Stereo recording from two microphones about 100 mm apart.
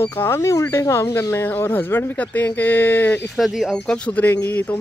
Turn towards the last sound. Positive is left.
turn(degrees=15)  # may be behind; listen again after turning